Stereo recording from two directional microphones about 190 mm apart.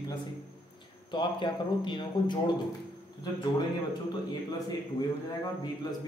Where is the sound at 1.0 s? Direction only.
25° left (ahead or behind).